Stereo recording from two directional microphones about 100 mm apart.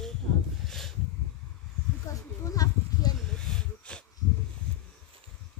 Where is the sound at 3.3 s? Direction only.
5° left (ahead or behind).